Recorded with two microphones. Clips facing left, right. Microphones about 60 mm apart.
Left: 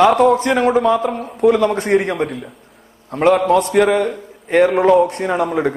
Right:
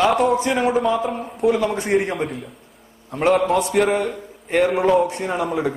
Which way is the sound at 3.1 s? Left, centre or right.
Left.